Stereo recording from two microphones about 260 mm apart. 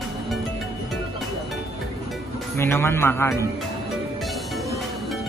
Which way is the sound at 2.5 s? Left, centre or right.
Centre.